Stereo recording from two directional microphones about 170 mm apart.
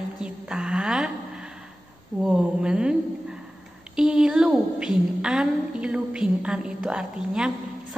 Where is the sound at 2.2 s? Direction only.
5° right (ahead or behind).